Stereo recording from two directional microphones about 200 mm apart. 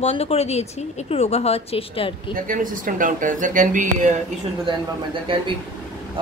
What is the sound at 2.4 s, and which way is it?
Speech, 40° right (ahead or behind).